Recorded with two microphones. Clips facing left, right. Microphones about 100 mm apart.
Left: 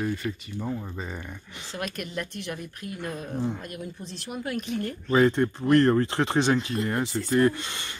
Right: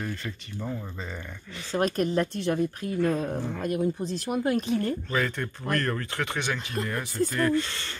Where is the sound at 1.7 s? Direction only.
35° right (ahead or behind).